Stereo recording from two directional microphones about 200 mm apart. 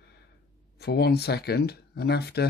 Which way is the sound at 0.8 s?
55° left (ahead or behind).